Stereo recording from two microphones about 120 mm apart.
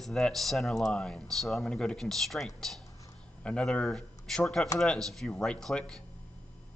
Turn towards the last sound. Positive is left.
turn(degrees=5)  # may be behind; listen again after turning